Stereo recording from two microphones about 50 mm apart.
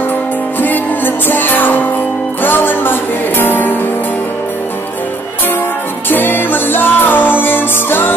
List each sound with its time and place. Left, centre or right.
0.6 s music: left
6.0 s music: left